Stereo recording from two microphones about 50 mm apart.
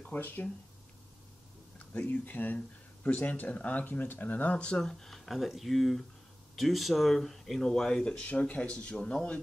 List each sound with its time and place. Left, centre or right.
0.0 s speech: left
2.2 s speech: left
4.6 s speech: centre
7.9 s speech: centre